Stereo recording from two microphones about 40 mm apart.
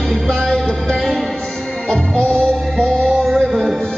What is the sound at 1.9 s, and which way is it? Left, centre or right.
Music, left.